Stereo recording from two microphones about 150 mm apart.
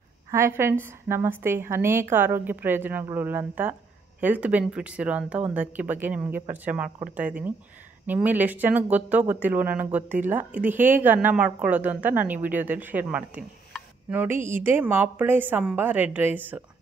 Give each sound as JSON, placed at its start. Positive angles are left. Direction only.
{"t": 0.3, "sound": "speech", "side_deg": -15}